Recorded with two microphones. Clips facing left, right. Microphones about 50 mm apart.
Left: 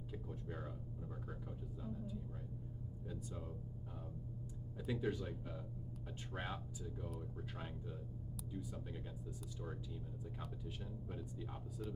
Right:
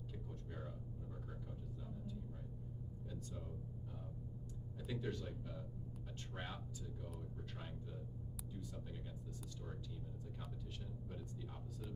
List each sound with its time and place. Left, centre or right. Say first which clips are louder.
4.8 s speech: left 4 dB; centre
6.3 s speech: left 4 dB; centre